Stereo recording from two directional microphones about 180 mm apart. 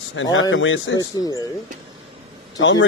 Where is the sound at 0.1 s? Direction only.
90° left.